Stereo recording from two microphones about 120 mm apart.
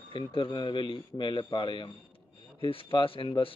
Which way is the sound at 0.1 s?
45° left (ahead or behind).